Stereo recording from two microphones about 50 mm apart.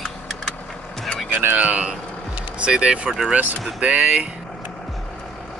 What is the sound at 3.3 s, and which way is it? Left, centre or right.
Speech, right.